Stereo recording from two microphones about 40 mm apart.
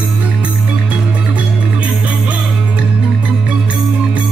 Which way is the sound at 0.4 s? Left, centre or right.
Right.